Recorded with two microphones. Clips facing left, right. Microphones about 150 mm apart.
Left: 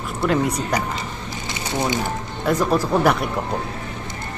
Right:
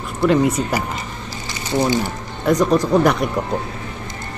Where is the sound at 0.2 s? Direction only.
Centre (ahead or behind).